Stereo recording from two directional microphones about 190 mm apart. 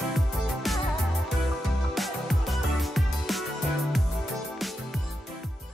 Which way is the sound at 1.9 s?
Centre (ahead or behind).